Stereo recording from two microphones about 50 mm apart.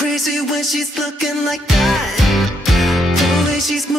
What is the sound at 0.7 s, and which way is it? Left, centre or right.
Music, centre.